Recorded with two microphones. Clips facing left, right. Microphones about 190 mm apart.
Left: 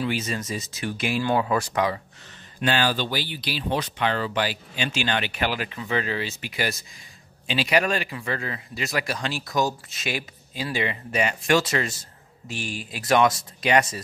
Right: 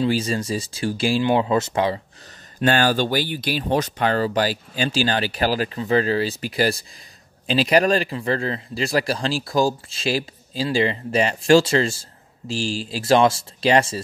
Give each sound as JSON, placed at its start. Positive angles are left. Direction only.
{"t": 0.0, "sound": "a man's voice", "side_deg": -30}
{"t": 2.6, "sound": "a man's voice", "side_deg": -45}